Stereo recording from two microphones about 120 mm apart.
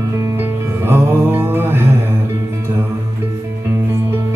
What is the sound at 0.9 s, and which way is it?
Music, 20° right (ahead or behind).